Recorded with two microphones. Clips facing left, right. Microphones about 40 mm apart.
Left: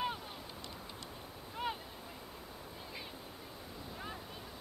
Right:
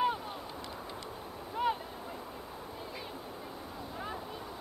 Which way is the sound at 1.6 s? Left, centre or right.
Centre.